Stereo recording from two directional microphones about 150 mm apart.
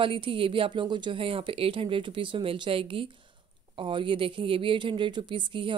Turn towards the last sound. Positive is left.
turn(degrees=-35)  # may be behind; listen again after turning